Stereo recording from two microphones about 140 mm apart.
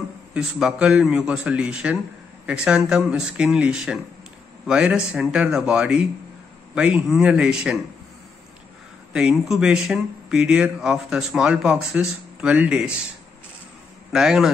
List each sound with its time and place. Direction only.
0.3 s speech: 5° right (ahead or behind)
9.1 s speech: 5° right (ahead or behind)
14.1 s speech: 5° right (ahead or behind)